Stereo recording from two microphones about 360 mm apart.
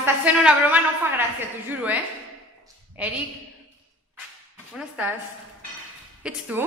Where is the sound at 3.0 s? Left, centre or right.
Centre.